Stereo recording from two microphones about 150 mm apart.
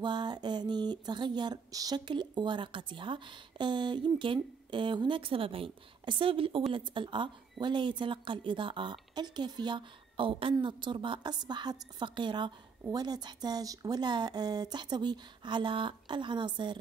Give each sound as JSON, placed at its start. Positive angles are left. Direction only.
{"t": 0.0, "sound": "speech", "side_deg": -30}